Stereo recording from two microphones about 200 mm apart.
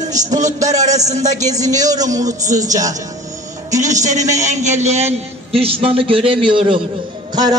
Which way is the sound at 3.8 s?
35° right (ahead or behind).